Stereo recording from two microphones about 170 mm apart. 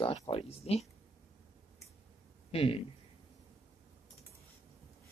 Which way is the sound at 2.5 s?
35° left (ahead or behind).